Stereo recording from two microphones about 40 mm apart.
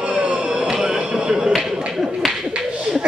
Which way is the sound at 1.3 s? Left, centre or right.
Centre.